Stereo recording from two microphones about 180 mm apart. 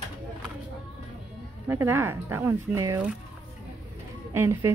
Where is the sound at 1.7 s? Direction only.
15° right (ahead or behind).